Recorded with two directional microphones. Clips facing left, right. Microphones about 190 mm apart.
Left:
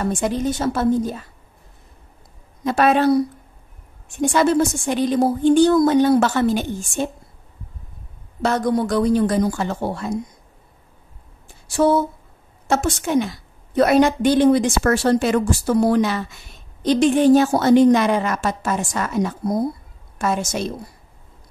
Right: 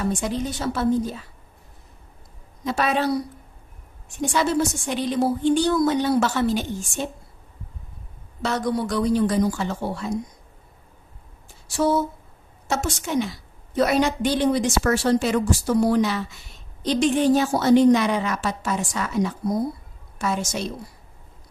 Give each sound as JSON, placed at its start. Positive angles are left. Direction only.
{"t": 0.0, "sound": "a woman's voice", "side_deg": 50}
{"t": 2.6, "sound": "a woman's voice", "side_deg": 55}
{"t": 4.2, "sound": "a woman's voice", "side_deg": 55}
{"t": 8.4, "sound": "a woman's voice", "side_deg": 50}
{"t": 11.6, "sound": "a sound", "side_deg": 55}
{"t": 12.6, "sound": "a woman's voice", "side_deg": 55}